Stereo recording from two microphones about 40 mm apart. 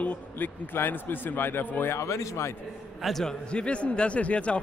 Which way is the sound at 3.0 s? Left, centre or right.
Centre.